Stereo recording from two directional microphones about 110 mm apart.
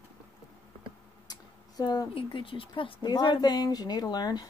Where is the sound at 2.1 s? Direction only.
50° left (ahead or behind).